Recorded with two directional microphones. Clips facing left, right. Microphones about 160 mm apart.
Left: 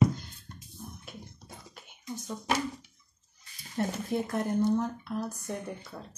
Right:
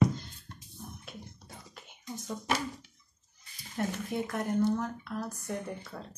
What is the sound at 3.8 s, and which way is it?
Speech, 25° left (ahead or behind).